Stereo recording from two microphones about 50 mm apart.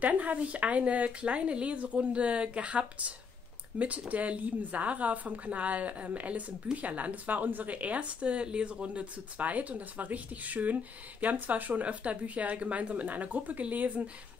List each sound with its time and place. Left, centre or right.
0.0 s speech: right